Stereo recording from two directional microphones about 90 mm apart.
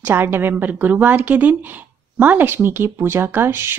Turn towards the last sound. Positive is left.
turn(degrees=-25)  # may be behind; listen again after turning